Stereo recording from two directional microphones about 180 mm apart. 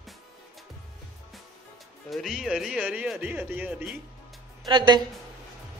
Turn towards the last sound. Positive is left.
turn(degrees=-25)  # may be behind; listen again after turning